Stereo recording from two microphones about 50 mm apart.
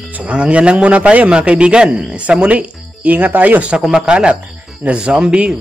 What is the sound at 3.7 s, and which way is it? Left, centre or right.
A man's voice, centre.